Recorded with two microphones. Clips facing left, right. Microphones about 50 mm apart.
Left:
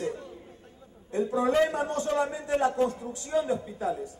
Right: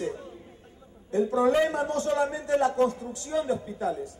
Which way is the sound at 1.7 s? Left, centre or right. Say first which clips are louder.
Right 2 dB; left.